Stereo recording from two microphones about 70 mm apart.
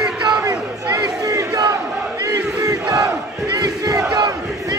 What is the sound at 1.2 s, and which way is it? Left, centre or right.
Battle cry, right.